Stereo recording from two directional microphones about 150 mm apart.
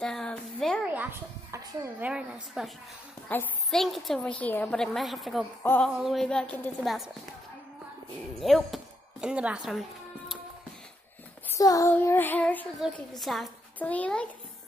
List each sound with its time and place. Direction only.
0.0 s a sound: 5° left (ahead or behind)
1.5 s a child's voice: 20° right (ahead or behind)
2.0 s a woman's voice: 5° right (ahead or behind)
3.3 s a child's voice: 10° left (ahead or behind)
3.8 s a woman's voice: centre (ahead or behind)
5.6 s child singing: 15° left (ahead or behind)
6.0 s a woman's voice: centre (ahead or behind)
8.4 s speech: centre (ahead or behind)
11.4 s child singing: 20° left (ahead or behind)
13.2 s a woman's voice: centre (ahead or behind)
13.7 s child singing: 10° left (ahead or behind)